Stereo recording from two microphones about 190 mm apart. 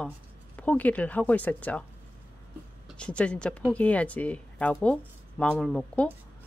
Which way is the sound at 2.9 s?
5° left (ahead or behind).